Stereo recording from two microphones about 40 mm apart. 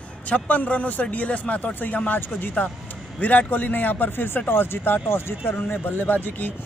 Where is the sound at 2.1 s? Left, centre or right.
Left.